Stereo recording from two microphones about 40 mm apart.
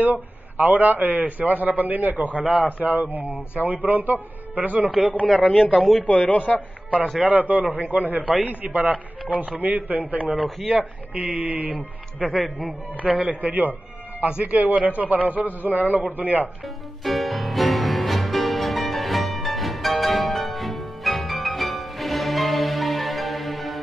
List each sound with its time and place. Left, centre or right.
0.0 s a man's voice: right
5.4 s a man's voice: left
7.2 s a man's voice: right
10.7 s a man's voice: right
16.6 s music: centre